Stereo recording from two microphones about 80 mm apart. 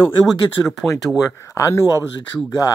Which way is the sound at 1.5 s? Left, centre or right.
Left.